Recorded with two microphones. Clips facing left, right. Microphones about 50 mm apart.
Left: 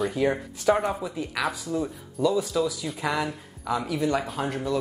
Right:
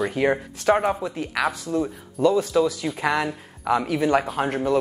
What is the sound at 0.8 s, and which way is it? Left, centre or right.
Speech, centre.